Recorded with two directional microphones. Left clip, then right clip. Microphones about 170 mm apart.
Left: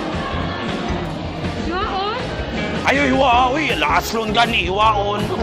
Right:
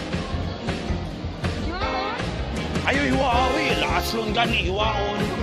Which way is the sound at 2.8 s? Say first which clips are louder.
Left 6 dB; 35° right (ahead or behind).